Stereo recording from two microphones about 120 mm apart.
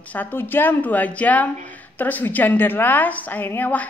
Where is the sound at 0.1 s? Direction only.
15° left (ahead or behind).